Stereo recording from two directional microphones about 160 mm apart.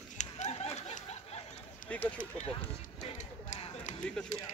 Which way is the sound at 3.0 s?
45° left (ahead or behind).